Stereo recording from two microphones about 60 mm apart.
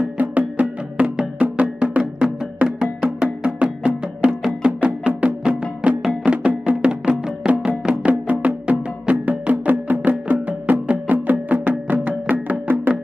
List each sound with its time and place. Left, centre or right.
0.2 s music: right
7.9 s music: right